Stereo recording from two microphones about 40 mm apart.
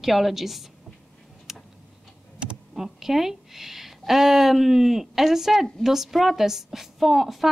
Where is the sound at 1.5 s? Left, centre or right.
Centre.